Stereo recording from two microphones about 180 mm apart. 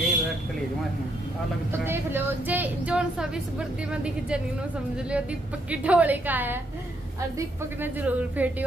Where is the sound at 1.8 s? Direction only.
10° right (ahead or behind).